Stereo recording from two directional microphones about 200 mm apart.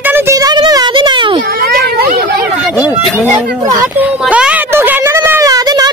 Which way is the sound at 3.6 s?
10° right (ahead or behind).